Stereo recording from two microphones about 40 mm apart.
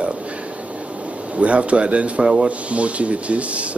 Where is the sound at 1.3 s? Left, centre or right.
Right.